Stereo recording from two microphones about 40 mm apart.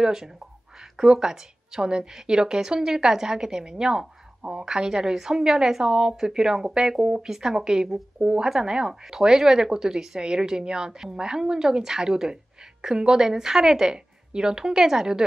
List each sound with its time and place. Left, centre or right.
0.0 s a woman's voice: centre
7.2 s a woman's voice: centre